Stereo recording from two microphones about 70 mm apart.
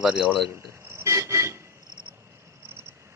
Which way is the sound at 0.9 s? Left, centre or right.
Right.